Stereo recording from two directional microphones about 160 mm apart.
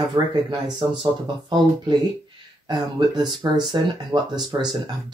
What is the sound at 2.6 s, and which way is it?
Speech, 25° right (ahead or behind).